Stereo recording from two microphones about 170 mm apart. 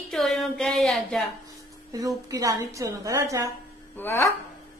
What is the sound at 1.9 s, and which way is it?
A woman's voice, 20° right (ahead or behind).